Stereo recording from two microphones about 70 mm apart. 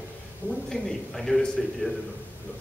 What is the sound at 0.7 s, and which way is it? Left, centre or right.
A man's voice, centre.